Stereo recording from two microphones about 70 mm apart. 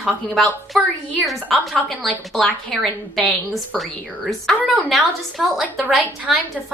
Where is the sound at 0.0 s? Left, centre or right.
Centre.